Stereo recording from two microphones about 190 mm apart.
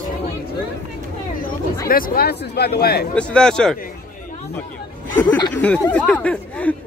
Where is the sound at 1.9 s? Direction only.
50° left (ahead or behind).